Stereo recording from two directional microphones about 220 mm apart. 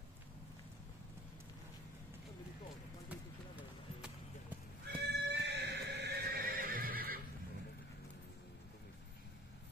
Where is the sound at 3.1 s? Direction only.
5° right (ahead or behind).